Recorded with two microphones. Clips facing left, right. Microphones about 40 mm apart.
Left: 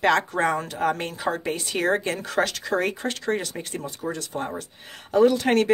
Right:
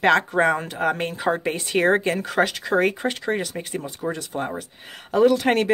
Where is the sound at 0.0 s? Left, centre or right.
Centre.